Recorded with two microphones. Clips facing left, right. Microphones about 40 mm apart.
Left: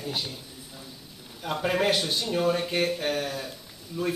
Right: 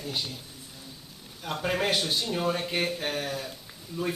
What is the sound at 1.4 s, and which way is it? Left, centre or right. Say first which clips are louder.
Speech: left 3 dB; centre.